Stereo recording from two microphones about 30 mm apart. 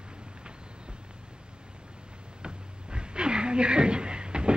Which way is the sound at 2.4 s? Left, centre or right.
Right.